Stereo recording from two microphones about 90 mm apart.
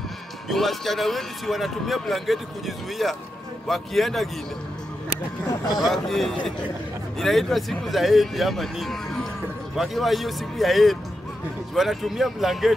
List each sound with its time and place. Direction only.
0.5 s a man's voice: centre (ahead or behind)
5.8 s a man's voice: centre (ahead or behind)